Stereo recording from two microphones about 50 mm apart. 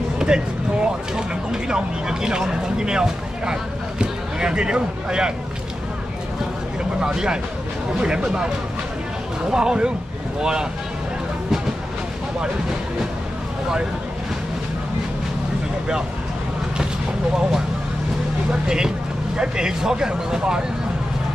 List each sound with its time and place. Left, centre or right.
0.2 s speech: centre
7.0 s speech: centre
9.5 s speech: centre
18.5 s speech: centre